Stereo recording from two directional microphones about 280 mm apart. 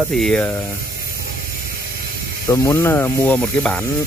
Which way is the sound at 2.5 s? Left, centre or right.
Centre.